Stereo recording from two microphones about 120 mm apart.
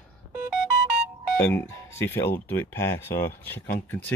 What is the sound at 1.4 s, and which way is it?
Speech, 20° left (ahead or behind).